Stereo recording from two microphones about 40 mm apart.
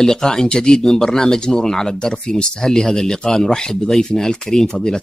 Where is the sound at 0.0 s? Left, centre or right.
Centre.